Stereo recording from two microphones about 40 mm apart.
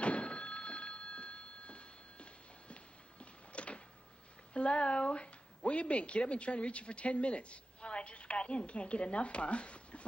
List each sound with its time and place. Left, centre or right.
0.0 s telephone bell ringing: left
2.7 s music: left
4.6 s a woman's voice: left